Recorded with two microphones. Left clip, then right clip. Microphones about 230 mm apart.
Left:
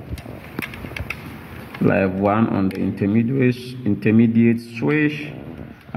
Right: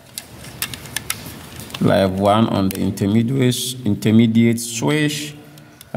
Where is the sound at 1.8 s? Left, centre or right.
Right.